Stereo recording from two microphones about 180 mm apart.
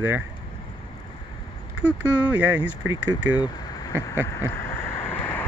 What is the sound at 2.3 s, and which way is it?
Speech, 10° right (ahead or behind).